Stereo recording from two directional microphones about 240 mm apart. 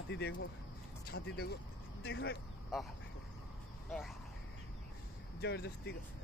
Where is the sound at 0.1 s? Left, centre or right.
Left.